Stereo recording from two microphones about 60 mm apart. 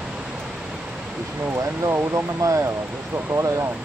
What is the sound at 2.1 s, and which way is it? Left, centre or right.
Speech, right.